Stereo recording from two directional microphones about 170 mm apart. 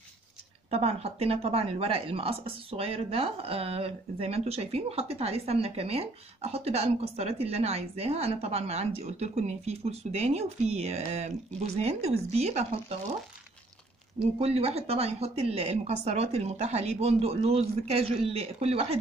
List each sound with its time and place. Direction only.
0.7 s speech: 35° right (ahead or behind)
14.4 s speech: 35° right (ahead or behind)